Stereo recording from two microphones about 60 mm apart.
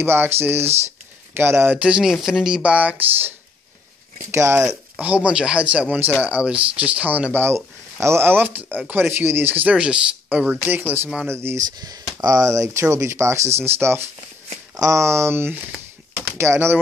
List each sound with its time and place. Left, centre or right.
0.0 s speech: right
1.8 s speech: centre
2.6 s speech: right
4.3 s speech: right
4.9 s speech: right
7.3 s speech: right
9.8 s speech: centre
10.7 s speech: right
11.2 s speech: right
11.5 s speech: right
14.8 s speech: right